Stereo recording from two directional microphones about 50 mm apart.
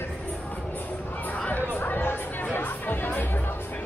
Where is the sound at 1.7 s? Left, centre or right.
Left.